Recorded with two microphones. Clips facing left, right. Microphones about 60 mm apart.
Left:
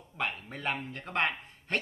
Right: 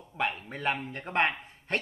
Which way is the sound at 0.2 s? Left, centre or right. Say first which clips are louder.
Right 4 dB; centre.